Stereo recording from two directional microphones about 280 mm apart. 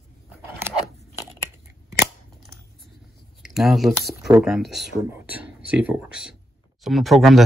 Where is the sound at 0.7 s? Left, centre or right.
Centre.